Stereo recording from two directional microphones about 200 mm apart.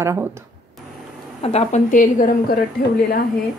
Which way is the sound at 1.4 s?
30° left (ahead or behind).